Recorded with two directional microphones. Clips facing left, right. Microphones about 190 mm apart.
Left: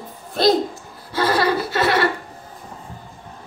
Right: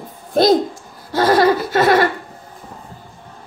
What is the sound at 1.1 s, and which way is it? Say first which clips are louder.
Laughter: right 5 dB; 45° right (ahead or behind).